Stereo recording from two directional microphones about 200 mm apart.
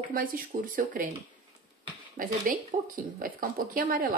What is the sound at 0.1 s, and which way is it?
Speech, 45° right (ahead or behind).